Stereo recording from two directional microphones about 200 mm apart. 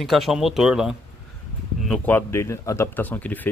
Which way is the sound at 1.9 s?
10° left (ahead or behind).